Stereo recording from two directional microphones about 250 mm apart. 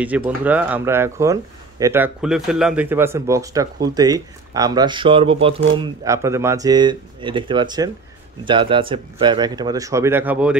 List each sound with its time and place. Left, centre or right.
0.0 s speech: centre